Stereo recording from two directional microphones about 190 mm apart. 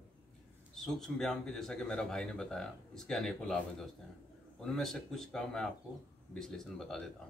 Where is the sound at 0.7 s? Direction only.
Centre (ahead or behind).